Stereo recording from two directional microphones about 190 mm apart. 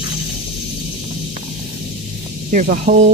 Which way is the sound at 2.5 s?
45° right (ahead or behind).